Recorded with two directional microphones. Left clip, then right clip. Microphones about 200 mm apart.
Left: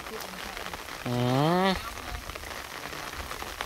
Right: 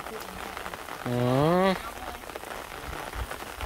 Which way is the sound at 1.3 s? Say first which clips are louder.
Right 2 dB; 10° right (ahead or behind).